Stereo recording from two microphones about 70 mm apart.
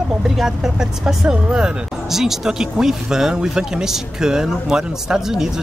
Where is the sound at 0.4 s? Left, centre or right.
Centre.